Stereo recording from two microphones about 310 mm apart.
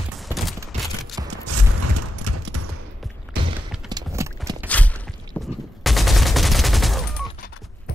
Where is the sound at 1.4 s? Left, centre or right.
Right.